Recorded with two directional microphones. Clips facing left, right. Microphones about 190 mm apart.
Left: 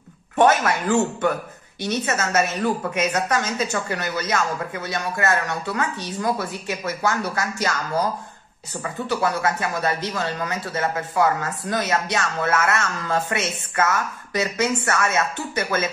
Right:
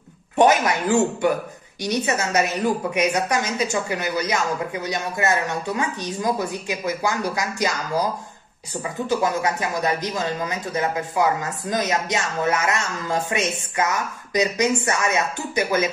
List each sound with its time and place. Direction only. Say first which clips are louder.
0.4 s a woman's voice: right 1 dB; 15° right (ahead or behind)
9.1 s a woman's voice: right 1 dB; 15° right (ahead or behind)